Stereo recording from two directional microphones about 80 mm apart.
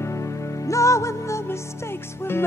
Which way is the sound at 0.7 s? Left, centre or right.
Left.